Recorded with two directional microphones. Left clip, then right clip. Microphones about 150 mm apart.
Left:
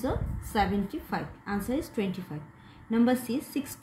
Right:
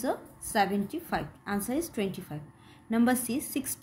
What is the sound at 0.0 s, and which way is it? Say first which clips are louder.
A woman's voice: even; 35° right (ahead or behind).